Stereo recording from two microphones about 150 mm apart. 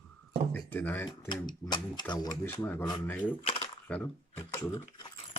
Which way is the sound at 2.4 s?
15° left (ahead or behind).